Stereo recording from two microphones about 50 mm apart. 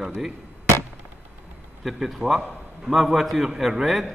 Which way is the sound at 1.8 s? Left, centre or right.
Centre.